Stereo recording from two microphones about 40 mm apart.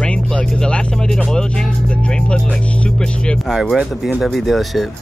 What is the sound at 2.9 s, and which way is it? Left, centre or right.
Music, centre.